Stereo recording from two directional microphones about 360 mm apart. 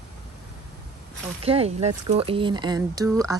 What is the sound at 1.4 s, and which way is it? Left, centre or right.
Speech, centre.